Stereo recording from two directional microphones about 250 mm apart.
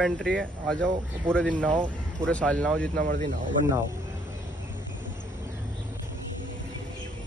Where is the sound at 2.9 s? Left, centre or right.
Right.